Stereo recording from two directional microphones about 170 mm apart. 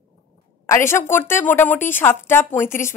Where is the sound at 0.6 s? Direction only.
15° left (ahead or behind).